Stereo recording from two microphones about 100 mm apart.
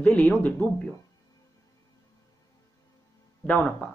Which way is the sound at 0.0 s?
15° left (ahead or behind).